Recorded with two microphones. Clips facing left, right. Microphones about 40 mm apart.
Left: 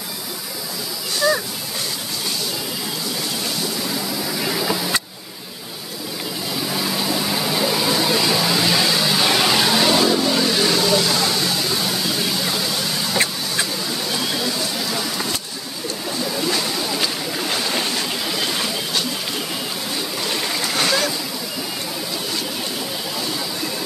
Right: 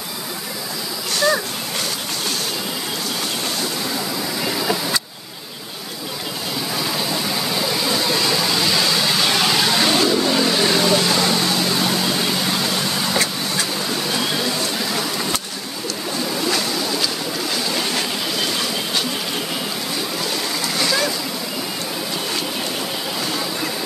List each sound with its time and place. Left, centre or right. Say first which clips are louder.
6.8 s a sound: left 1 dB; centre
8.9 s vehicle: even; centre
9.2 s vehicle: left 2 dB; centre; by 12.4 s right